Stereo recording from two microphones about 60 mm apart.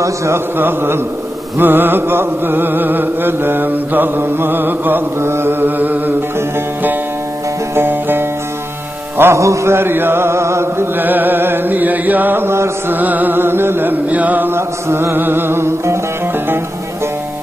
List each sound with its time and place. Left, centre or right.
0.0 s a sound: right
0.6 s music: right
7.9 s music: right
9.2 s mantra: right
11.0 s music: right
12.9 s music: right
14.5 s mantra: right